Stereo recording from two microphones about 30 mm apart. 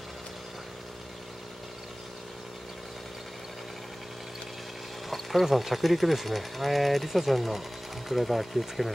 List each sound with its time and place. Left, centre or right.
5.1 s speech: centre